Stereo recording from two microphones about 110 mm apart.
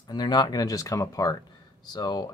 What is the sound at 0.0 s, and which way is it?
Speech, 40° left (ahead or behind).